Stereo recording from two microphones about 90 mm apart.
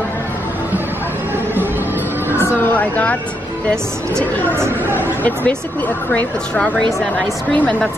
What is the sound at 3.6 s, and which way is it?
Speech, 10° left (ahead or behind).